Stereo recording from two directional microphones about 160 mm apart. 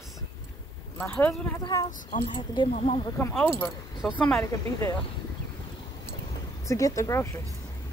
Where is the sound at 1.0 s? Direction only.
10° left (ahead or behind).